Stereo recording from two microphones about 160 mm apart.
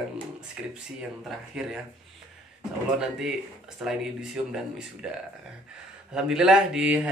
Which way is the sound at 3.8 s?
5° right (ahead or behind).